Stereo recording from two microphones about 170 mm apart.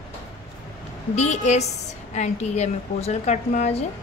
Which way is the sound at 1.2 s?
40° left (ahead or behind).